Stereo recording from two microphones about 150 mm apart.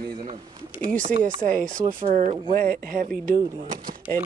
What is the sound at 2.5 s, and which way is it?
Speech, 70° right (ahead or behind).